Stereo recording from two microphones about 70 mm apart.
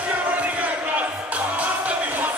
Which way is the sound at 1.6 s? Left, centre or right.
Right.